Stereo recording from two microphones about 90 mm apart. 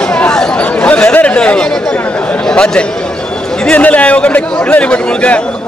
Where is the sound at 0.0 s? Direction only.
15° left (ahead or behind).